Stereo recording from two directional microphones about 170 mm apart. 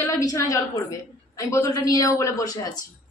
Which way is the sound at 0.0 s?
20° left (ahead or behind).